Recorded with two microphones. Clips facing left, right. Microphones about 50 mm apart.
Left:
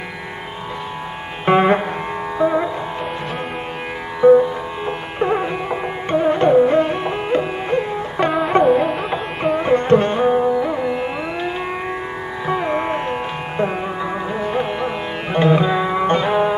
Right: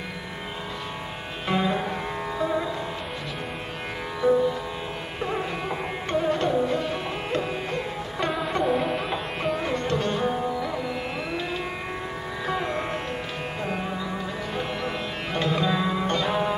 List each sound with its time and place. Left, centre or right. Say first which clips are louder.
1.4 s music: left 11 dB; left
2.3 s music: left 9 dB; left
4.8 s music: left 10 dB; left
6.7 s music: left 10 dB; left
7.2 s music: left 8 dB; left; by 9.2 s centre
9.4 s music: left 11 dB; left